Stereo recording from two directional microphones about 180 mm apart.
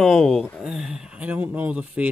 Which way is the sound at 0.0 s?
Centre (ahead or behind).